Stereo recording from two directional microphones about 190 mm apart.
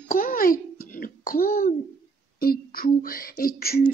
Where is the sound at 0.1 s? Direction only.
50° left (ahead or behind).